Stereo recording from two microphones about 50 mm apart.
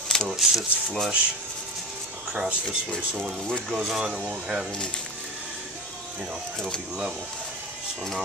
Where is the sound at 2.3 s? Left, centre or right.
Centre.